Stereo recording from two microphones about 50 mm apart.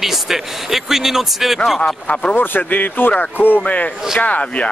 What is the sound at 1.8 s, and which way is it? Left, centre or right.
Speech, centre.